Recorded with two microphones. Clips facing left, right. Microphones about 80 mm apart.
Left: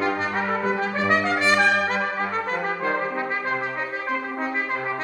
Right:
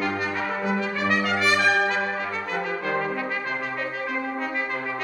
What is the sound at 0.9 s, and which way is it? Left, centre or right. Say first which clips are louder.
Brass instrument: left 3 dB; left.